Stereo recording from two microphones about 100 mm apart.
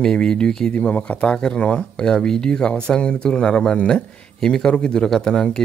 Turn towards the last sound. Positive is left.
turn(degrees=5)  # may be behind; listen again after turning